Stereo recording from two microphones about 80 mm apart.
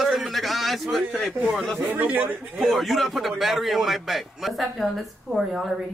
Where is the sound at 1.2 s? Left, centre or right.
Centre.